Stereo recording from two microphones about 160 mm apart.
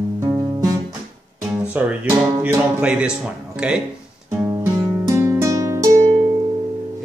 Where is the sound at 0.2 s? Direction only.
15° right (ahead or behind).